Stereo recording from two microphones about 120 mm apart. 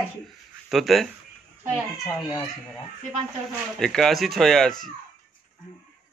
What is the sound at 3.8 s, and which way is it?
Speech, 5° left (ahead or behind).